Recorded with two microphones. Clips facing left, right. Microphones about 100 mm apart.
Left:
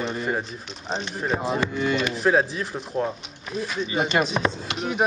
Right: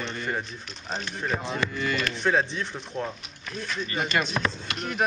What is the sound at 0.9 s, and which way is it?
Snicker, 20° left (ahead or behind).